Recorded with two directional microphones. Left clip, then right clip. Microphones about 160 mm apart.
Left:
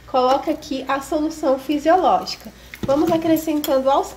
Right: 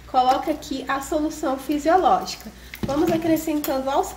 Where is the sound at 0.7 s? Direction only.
15° left (ahead or behind).